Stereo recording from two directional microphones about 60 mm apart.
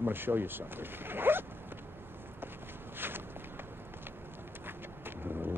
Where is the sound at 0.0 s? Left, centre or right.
Right.